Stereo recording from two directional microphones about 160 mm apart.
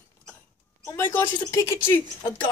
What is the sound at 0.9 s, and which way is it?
Speech, 15° left (ahead or behind).